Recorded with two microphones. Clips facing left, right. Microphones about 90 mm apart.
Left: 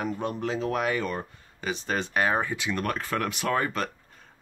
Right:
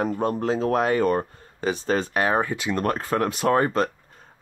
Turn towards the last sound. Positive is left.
turn(degrees=-35)  # may be behind; listen again after turning